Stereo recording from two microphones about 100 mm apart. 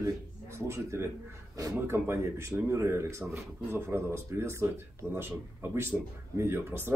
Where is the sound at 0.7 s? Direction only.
30° right (ahead or behind).